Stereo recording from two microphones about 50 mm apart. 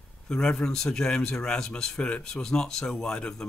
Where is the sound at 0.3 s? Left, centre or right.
Centre.